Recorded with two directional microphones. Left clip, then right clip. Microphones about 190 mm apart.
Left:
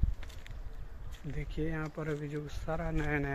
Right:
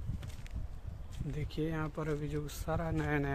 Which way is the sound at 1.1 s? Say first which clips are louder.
Right 1 dB; 15° right (ahead or behind).